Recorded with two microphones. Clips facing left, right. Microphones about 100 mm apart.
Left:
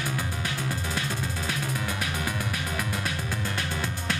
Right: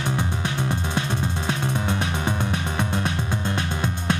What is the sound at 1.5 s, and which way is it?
Music, 25° right (ahead or behind).